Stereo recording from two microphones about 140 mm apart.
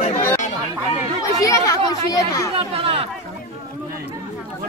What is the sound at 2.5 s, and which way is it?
Speech, 45° right (ahead or behind).